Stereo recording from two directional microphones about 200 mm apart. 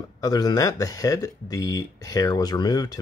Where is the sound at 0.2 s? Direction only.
20° left (ahead or behind).